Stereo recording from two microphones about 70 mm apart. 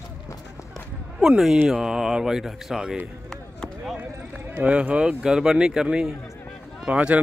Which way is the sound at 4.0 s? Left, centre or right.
Right.